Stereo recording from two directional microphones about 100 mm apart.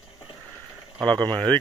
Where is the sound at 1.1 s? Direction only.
45° right (ahead or behind).